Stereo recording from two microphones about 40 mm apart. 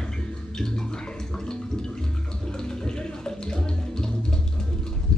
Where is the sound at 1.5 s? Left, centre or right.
Centre.